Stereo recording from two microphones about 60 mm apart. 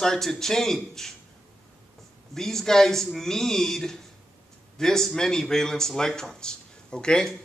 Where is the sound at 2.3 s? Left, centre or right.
Centre.